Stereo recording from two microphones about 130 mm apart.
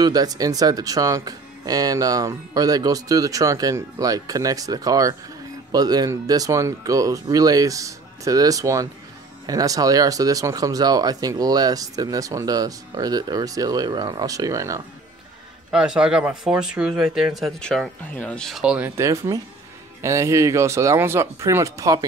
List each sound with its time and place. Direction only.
0.0 s speech: 30° right (ahead or behind)
15.7 s speech: 5° right (ahead or behind)
18.6 s speech: 10° right (ahead or behind)
18.9 s speech: 25° right (ahead or behind)